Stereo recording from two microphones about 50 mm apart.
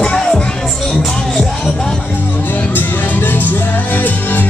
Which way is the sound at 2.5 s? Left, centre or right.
Left.